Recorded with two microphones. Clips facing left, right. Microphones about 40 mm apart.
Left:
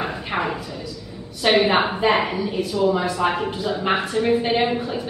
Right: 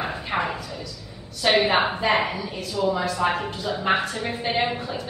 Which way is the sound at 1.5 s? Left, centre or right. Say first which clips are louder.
Left 2 dB; centre.